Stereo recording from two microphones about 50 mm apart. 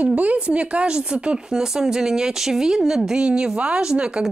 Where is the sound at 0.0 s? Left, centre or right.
Right.